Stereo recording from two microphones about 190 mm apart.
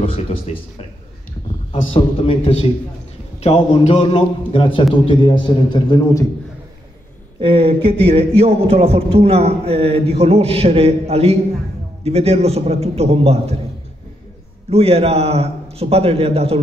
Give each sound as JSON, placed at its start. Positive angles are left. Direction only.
{"t": 0.0, "sound": "a man's voice", "side_deg": 30}
{"t": 2.0, "sound": "a man's voice", "side_deg": 30}
{"t": 7.3, "sound": "a man's voice", "side_deg": -30}
{"t": 14.7, "sound": "a man's voice", "side_deg": -30}